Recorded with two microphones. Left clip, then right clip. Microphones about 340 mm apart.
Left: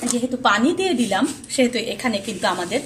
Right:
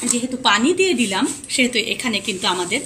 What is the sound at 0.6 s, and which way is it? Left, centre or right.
A woman's voice, left.